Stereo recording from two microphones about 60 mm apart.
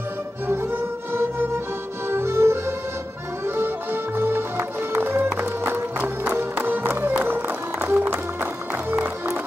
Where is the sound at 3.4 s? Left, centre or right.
Right.